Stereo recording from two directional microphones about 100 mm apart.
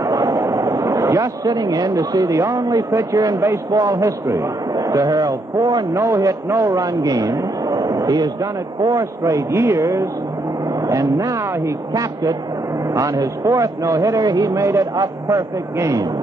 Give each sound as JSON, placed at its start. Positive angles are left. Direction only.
{"t": 0.1, "sound": "a sound", "side_deg": -35}
{"t": 0.4, "sound": "a man's voice", "side_deg": -30}
{"t": 5.9, "sound": "a man's voice", "side_deg": -30}
{"t": 12.9, "sound": "a man's voice", "side_deg": -35}